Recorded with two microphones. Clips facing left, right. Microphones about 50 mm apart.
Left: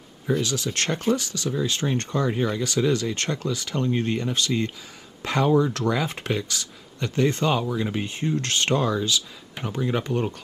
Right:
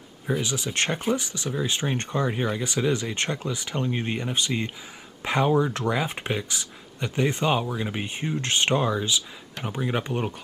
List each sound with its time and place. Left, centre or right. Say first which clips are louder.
0.3 s speech: left 2 dB; right